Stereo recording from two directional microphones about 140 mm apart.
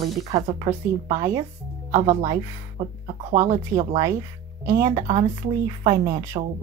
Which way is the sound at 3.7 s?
25° right (ahead or behind).